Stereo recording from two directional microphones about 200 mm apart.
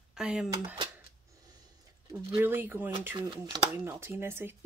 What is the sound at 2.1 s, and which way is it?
Speech, 10° right (ahead or behind).